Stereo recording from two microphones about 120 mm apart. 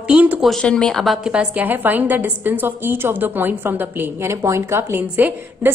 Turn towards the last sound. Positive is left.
turn(degrees=-15)  # may be behind; listen again after turning